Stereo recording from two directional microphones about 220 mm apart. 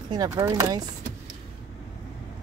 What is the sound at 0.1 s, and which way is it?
Speech, 15° right (ahead or behind).